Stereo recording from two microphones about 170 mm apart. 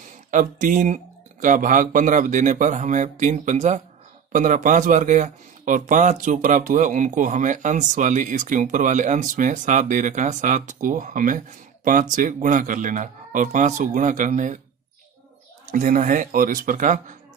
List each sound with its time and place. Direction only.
0.3 s speech: 50° right (ahead or behind)
15.7 s speech: 50° right (ahead or behind)